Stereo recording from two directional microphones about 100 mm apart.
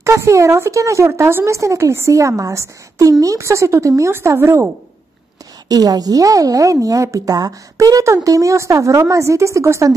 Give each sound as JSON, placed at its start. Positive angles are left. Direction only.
{"t": 0.0, "sound": "speech", "side_deg": -30}
{"t": 5.7, "sound": "a woman's voice", "side_deg": -40}